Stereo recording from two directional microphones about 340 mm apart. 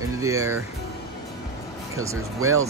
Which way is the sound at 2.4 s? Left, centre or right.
Right.